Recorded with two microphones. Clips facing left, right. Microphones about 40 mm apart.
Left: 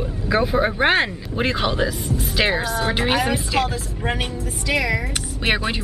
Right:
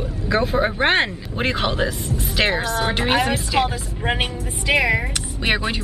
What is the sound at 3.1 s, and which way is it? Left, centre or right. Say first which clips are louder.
Speech: right 1 dB; centre.